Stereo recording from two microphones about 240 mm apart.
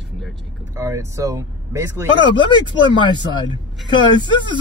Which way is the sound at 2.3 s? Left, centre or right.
Centre.